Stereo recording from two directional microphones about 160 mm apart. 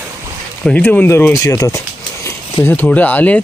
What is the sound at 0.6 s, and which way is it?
Speech, 10° left (ahead or behind).